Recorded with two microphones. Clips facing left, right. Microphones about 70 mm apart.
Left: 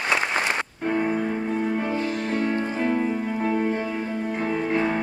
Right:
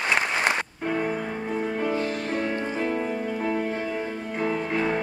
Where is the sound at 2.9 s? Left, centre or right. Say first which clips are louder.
Left 3 dB; centre.